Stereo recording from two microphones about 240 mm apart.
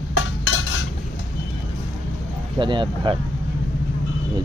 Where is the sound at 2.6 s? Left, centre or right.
Centre.